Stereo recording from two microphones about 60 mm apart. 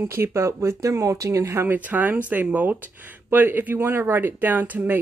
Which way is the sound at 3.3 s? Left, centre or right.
Right.